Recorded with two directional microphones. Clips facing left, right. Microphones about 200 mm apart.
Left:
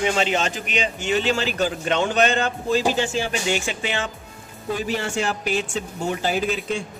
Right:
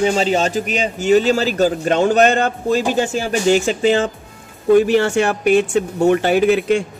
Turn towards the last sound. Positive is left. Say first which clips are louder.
# right 10 dB
turn(degrees=-70)  # may be behind; listen again after turning